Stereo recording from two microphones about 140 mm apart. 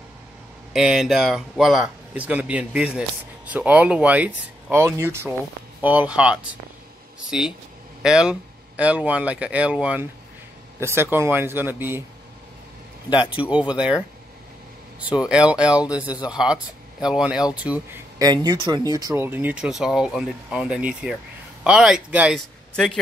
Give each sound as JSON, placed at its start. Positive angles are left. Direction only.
{"t": 0.7, "sound": "a man's voice", "side_deg": -5}
{"t": 13.3, "sound": "a man's voice", "side_deg": -10}
{"t": 18.2, "sound": "speech", "side_deg": -30}
{"t": 19.1, "sound": "a man's voice", "side_deg": -15}